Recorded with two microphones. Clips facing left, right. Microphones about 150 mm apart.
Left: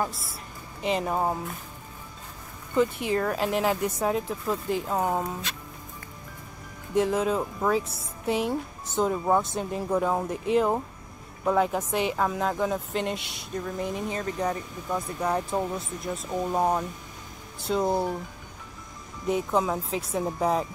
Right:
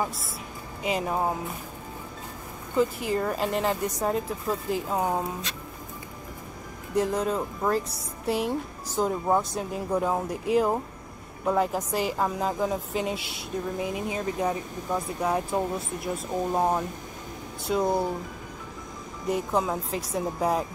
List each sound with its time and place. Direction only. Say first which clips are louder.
0.8 s a woman's voice: left 1 dB; 5° right (ahead or behind)
2.8 s a woman's voice: left 1 dB; centre (ahead or behind)
6.9 s a woman's voice: left 1 dB; centre (ahead or behind)
19.2 s a woman's voice: left 1 dB; centre (ahead or behind)